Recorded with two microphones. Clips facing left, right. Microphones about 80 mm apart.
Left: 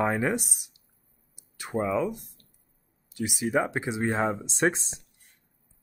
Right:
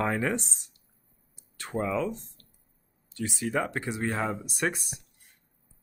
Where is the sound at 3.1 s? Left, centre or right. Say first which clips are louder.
Left 3 dB; centre.